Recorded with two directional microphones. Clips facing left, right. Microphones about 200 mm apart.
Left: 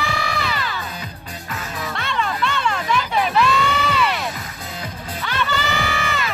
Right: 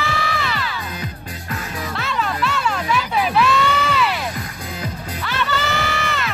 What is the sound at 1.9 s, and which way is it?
Music, 5° right (ahead or behind).